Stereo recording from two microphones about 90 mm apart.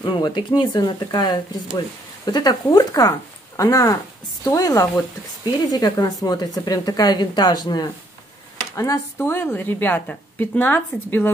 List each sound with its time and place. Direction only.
0.0 s a woman's voice: 60° left (ahead or behind)
8.7 s a woman's voice: 35° left (ahead or behind)